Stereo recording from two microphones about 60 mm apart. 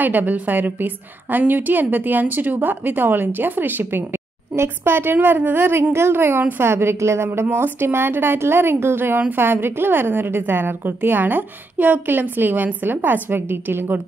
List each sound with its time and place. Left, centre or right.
0.0 s a woman's voice: right
7.2 s a woman's voice: right